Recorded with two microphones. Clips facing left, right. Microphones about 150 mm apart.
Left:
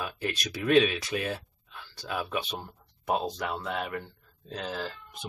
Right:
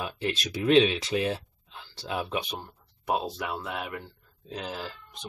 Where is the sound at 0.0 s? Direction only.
25° right (ahead or behind).